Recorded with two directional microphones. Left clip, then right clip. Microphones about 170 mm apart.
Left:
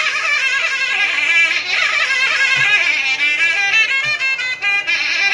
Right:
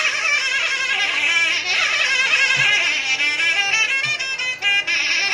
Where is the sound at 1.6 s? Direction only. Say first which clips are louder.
Left 2 dB; 40° right (ahead or behind).